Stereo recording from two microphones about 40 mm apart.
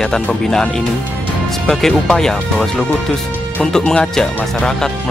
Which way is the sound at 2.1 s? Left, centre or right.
Centre.